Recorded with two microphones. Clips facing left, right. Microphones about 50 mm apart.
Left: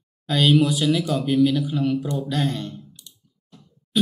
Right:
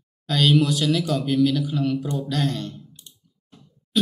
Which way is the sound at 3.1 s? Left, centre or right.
Right.